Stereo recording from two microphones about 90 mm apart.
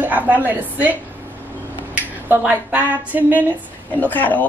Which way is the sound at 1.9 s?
20° right (ahead or behind).